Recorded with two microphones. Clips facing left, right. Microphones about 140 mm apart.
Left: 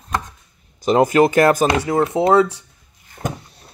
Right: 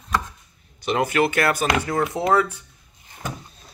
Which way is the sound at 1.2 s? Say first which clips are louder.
Left 6 dB; 40° left (ahead or behind).